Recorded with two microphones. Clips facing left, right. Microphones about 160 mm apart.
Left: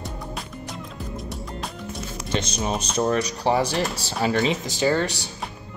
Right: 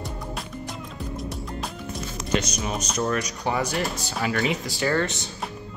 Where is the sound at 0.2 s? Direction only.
Centre (ahead or behind).